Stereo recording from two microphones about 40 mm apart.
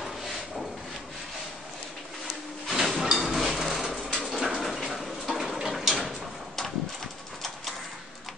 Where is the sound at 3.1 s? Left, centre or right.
Centre.